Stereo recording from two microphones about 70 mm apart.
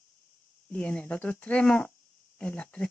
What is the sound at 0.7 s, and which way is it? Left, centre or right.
Speech, left.